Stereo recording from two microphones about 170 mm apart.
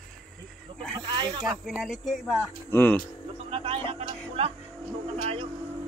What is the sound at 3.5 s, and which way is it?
Music, 35° right (ahead or behind).